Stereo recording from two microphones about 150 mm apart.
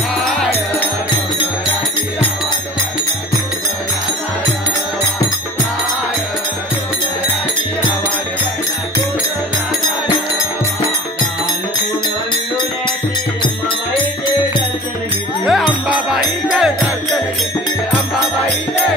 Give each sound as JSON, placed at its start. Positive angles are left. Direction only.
{"t": 15.4, "sound": "music", "side_deg": 0}